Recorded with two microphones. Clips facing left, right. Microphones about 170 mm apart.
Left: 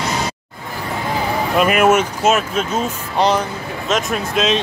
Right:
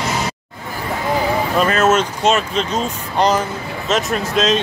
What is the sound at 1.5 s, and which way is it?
Music, 15° left (ahead or behind).